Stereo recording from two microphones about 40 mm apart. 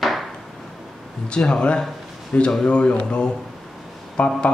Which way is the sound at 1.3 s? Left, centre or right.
Left.